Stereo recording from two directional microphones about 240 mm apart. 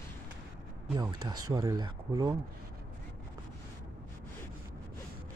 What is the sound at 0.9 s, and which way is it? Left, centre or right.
Speech, centre.